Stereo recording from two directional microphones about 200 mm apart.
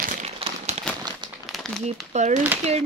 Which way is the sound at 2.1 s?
35° right (ahead or behind).